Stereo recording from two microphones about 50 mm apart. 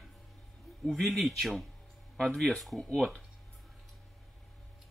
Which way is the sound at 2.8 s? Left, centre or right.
Centre.